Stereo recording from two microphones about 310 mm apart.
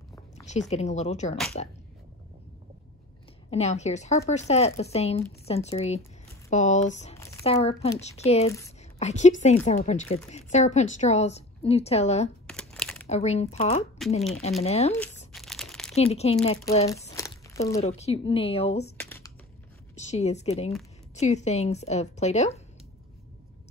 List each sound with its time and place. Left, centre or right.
0.5 s a woman's voice: left
3.4 s a woman's voice: left
7.2 s a sound: centre
7.5 s a woman's voice: centre
8.5 s speech: centre
9.0 s a woman's voice: left
12.4 s crumpling: centre
13.1 s a woman's voice: left
15.3 s crumpling: centre
16.0 s a woman's voice: centre
17.1 s crumpling: centre
17.7 s a woman's voice: left
18.9 s computer keyboard: centre
20.0 s a woman's voice: left